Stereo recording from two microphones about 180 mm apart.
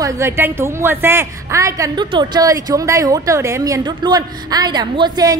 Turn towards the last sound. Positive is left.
turn(degrees=-20)  # may be behind; listen again after turning